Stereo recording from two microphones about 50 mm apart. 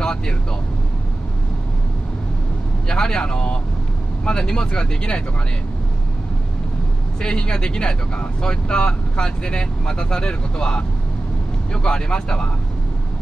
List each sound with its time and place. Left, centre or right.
0.0 s vehicle: centre
2.9 s speech: centre
7.2 s speech: centre